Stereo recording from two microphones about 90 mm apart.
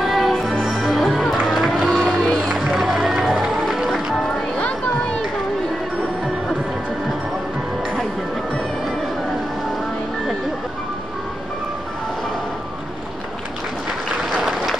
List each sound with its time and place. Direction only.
0.0 s music: centre (ahead or behind)
1.5 s run: centre (ahead or behind)
2.4 s music: 5° right (ahead or behind)
4.6 s a sound: 10° left (ahead or behind)
14.3 s applause: 5° right (ahead or behind)